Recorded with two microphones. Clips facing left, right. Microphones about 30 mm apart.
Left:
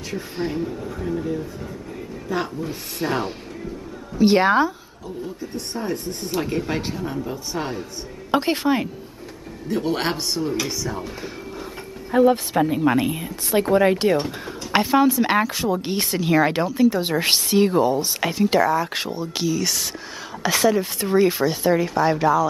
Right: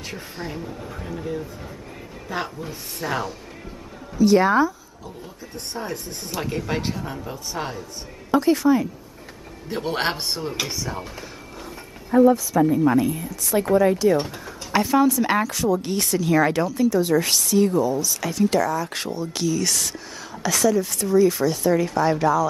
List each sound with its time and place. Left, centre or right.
0.5 s speech: centre
0.8 s speech: centre
2.2 s speech: centre
3.0 s speech: left
4.2 s a woman's voice: left
5.7 s speech: centre
8.3 s a woman's voice: left
9.8 s speech: centre
12.1 s a woman's voice: left
16.9 s a woman's voice: left
18.3 s speech: left
20.4 s speech: left